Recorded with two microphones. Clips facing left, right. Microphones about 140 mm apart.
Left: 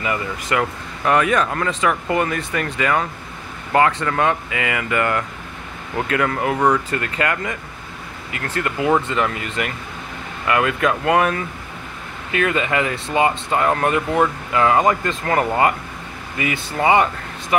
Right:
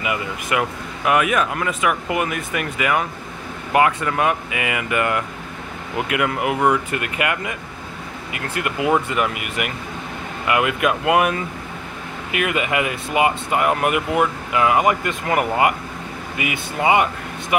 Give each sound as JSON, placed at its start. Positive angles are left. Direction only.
{"t": 0.0, "sound": "speech", "side_deg": -15}